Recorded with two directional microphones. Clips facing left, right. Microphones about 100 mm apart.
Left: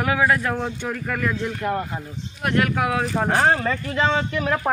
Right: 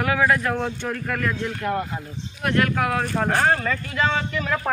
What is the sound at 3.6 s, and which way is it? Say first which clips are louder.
Speech: left 2 dB; 25° left (ahead or behind).